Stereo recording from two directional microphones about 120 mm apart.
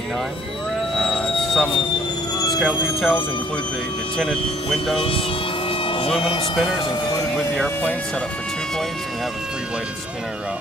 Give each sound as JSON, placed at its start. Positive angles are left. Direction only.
{"t": 0.9, "sound": "vehicle", "side_deg": 0}
{"t": 2.6, "sound": "speech", "side_deg": -5}
{"t": 4.9, "sound": "speech", "side_deg": 50}
{"t": 5.7, "sound": "vehicle", "side_deg": 45}
{"t": 6.2, "sound": "speech", "side_deg": 50}